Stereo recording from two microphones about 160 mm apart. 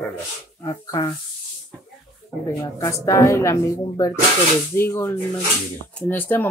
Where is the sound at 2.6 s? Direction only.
20° left (ahead or behind).